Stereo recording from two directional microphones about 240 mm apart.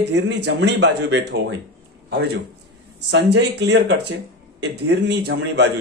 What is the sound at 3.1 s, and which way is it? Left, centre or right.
Speech, right.